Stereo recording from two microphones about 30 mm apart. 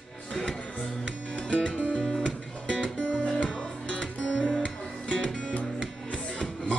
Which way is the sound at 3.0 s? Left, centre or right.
Left.